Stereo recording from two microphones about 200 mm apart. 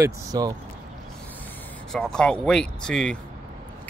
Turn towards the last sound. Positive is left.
turn(degrees=5)  # may be behind; listen again after turning